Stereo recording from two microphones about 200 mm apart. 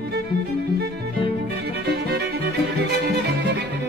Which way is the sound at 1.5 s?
55° right (ahead or behind).